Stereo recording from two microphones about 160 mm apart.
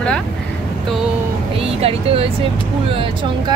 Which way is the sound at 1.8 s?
35° right (ahead or behind).